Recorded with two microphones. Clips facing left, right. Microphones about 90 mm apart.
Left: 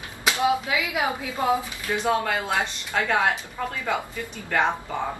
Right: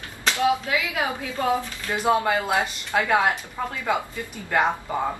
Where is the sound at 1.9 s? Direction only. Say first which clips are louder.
Right 3 dB; 10° right (ahead or behind).